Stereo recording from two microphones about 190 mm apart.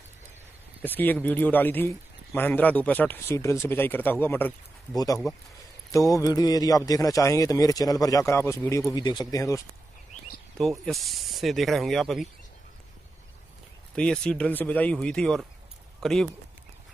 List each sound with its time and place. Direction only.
0.8 s speech: 10° left (ahead or behind)
10.6 s speech: 5° left (ahead or behind)
13.9 s speech: 5° left (ahead or behind)